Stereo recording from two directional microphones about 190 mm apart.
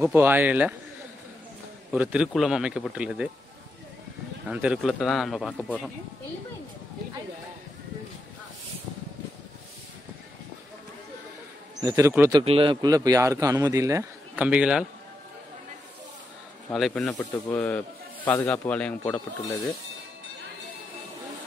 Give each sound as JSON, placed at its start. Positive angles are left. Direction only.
{"t": 0.0, "sound": "a man's voice", "side_deg": -10}
{"t": 1.9, "sound": "a man's voice", "side_deg": -5}
{"t": 4.5, "sound": "a man's voice", "side_deg": -5}
{"t": 11.8, "sound": "a man's voice", "side_deg": -20}
{"t": 16.7, "sound": "a man's voice", "side_deg": 0}